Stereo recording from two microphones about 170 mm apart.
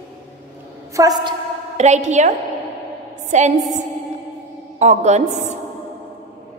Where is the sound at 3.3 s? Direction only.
45° right (ahead or behind).